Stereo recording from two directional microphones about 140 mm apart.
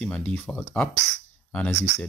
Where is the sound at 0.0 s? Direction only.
10° left (ahead or behind).